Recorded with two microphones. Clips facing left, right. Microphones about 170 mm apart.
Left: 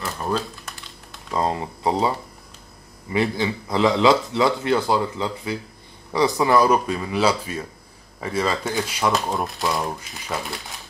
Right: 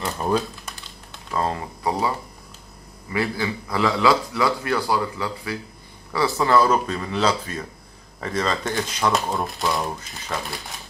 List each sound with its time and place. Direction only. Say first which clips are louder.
0.0 s crumpling: right 3 dB; 20° right (ahead or behind)
1.3 s a man's voice: left 2 dB; 20° left (ahead or behind)